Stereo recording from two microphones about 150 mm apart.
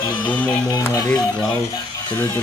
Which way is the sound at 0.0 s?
30° left (ahead or behind).